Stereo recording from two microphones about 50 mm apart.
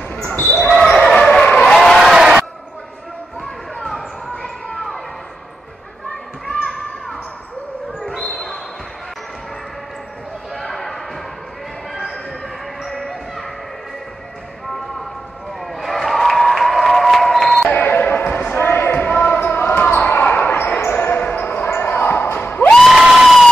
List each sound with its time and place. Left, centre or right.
0.1 s basketball bounce: left
0.6 s basketball bounce: centre
1.8 s a sound: centre
3.8 s basketball bounce: centre
6.5 s basketball bounce: centre
10.5 s basketball bounce: centre
11.9 s a sound: centre
15.6 s applause: centre
17.8 s basketball bounce: left
19.0 s basketball bounce: left
19.3 s basketball bounce: left
20.5 s basketball bounce: left
22.8 s crowd: centre